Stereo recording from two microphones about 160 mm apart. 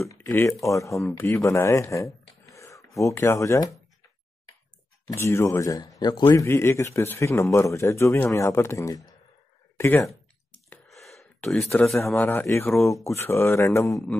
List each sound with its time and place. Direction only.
0.1 s speech: 20° left (ahead or behind)
5.1 s speech: 15° left (ahead or behind)
10.7 s gasp: centre (ahead or behind)
12.1 s speech: 10° left (ahead or behind)